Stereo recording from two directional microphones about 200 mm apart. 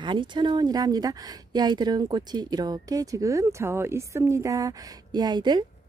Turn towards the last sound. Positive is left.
turn(degrees=-20)  # may be behind; listen again after turning